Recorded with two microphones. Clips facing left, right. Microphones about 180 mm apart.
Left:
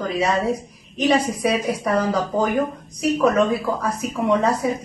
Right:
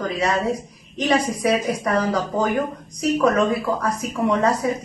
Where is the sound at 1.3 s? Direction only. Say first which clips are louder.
Right 1 dB; centre (ahead or behind).